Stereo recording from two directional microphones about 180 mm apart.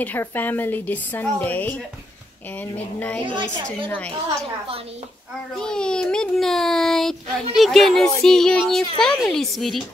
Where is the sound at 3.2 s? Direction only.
25° right (ahead or behind).